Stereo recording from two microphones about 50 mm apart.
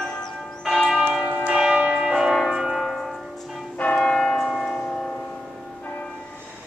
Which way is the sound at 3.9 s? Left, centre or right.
Centre.